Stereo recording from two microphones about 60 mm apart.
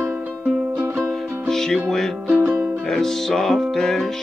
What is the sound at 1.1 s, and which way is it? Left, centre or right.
Music, centre.